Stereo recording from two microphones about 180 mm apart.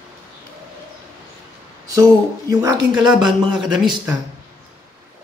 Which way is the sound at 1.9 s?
20° right (ahead or behind).